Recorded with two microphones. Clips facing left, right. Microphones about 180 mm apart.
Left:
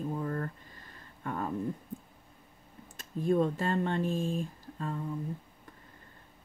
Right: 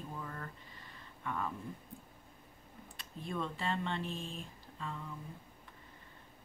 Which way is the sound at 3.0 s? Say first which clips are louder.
Left 13 dB; 45° left (ahead or behind).